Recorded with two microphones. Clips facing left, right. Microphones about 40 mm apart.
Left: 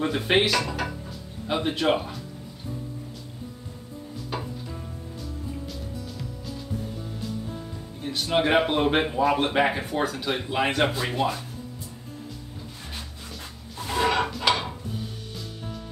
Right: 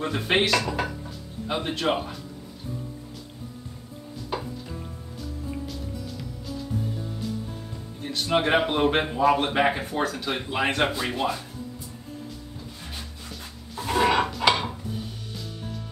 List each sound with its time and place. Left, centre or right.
0.0 s a man's voice: centre
5.7 s music: centre
8.0 s a man's voice: centre
12.9 s music: centre
13.8 s a sound: centre
14.4 s dishes: centre